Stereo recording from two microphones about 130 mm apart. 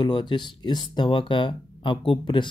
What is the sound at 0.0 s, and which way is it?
Speech, 35° left (ahead or behind).